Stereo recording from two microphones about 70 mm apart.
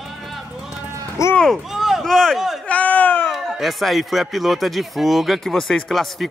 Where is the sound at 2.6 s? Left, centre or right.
Left.